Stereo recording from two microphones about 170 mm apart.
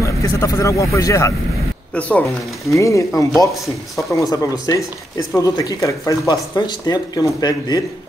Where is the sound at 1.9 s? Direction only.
10° left (ahead or behind).